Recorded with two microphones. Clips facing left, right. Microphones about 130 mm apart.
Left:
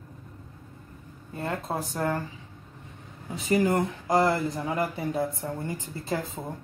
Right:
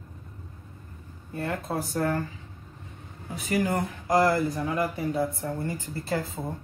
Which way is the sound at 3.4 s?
25° left (ahead or behind).